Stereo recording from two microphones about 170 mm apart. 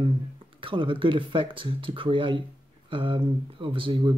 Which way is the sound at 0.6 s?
30° right (ahead or behind).